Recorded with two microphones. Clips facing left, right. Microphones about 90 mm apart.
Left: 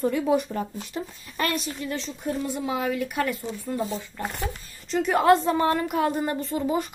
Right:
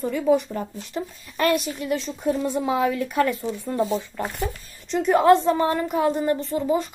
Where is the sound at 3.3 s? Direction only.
30° right (ahead or behind).